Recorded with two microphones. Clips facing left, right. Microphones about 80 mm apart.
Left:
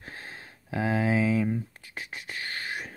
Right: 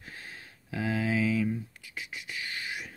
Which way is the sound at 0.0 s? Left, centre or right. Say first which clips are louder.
Left 3 dB; left.